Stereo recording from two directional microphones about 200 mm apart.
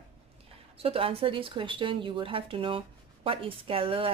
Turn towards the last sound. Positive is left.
turn(degrees=-25)  # may be behind; listen again after turning